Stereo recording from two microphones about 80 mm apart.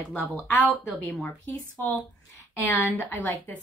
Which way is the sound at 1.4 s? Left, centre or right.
Left.